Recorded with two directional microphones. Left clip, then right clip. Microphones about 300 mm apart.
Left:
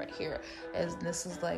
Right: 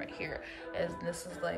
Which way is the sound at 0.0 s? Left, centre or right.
Centre.